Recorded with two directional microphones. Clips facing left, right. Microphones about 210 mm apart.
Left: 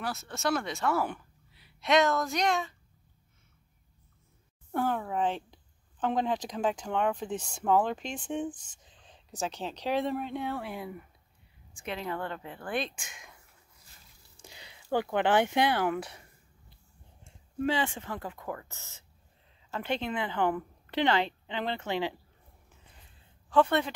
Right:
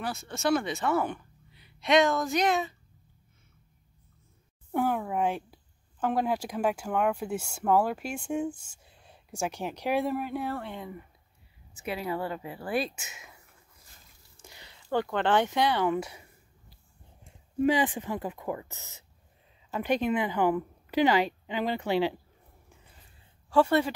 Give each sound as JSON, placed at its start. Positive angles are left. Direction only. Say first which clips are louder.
{"t": 0.0, "sound": "speech", "louder": "right 2 dB", "side_deg": 0}
{"t": 4.7, "sound": "speech", "louder": "right 2 dB", "side_deg": -10}
{"t": 11.7, "sound": "speech", "louder": "right 3 dB", "side_deg": -5}
{"t": 14.3, "sound": "speech", "louder": "even", "side_deg": 10}
{"t": 17.2, "sound": "speech", "louder": "right 5 dB", "side_deg": -15}
{"t": 23.5, "sound": "speech", "louder": "right 2 dB", "side_deg": -5}